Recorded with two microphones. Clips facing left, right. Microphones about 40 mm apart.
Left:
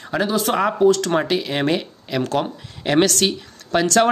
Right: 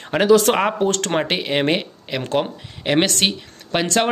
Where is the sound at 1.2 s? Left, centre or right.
Right.